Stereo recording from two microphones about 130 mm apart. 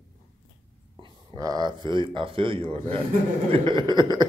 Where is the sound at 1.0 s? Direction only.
30° right (ahead or behind).